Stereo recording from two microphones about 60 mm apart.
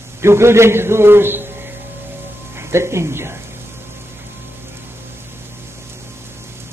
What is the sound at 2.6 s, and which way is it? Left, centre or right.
Speech, right.